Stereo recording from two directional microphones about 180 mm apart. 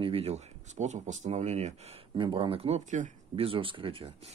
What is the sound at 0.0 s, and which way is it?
Speech, 35° right (ahead or behind).